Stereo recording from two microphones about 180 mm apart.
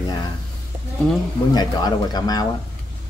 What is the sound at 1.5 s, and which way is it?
Speech, 20° left (ahead or behind).